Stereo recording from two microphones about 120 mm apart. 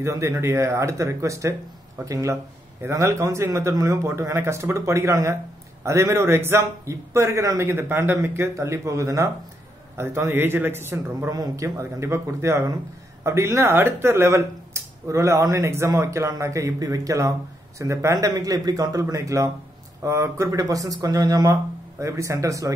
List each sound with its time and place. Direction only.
0.0 s speech: 25° right (ahead or behind)